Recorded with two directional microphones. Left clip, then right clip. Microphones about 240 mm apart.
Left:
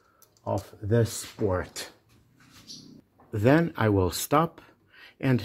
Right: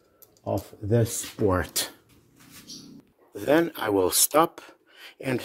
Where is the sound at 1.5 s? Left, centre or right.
Right.